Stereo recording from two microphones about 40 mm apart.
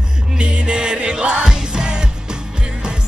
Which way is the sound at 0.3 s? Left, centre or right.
Right.